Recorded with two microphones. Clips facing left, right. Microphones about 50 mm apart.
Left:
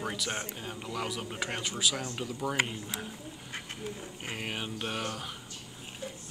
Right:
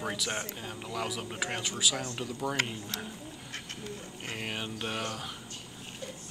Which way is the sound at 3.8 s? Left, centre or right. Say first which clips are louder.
Left 1 dB; centre.